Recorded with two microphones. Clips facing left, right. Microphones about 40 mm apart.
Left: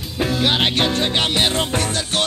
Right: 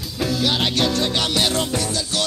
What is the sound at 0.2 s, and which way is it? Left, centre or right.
Music, left.